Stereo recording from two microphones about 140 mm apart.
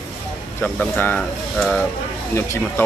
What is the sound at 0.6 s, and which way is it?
Speech, 10° left (ahead or behind).